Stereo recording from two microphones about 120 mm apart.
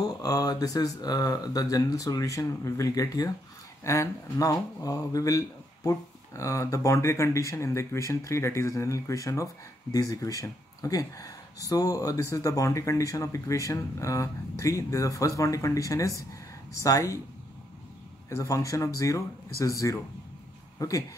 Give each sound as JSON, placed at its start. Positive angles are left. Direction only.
{"t": 0.2, "sound": "speech", "side_deg": 30}
{"t": 18.3, "sound": "speech", "side_deg": 25}